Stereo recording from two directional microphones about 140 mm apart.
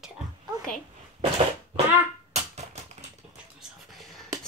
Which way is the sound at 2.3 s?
50° right (ahead or behind).